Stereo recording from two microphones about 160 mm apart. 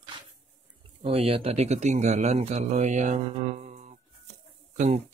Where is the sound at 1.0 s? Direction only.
35° right (ahead or behind).